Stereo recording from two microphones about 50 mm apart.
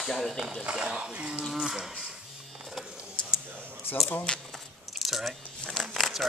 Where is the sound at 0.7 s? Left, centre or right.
Centre.